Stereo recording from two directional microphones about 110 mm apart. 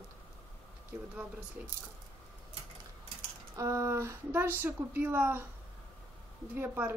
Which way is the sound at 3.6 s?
25° right (ahead or behind).